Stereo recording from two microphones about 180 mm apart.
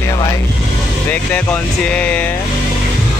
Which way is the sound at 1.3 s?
5° left (ahead or behind).